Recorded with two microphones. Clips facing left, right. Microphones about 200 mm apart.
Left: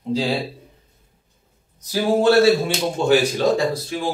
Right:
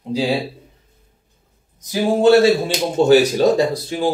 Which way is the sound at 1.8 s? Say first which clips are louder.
Right 3 dB; 20° right (ahead or behind).